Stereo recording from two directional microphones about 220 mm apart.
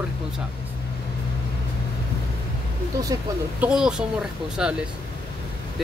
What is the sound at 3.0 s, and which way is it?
Speech, 15° right (ahead or behind).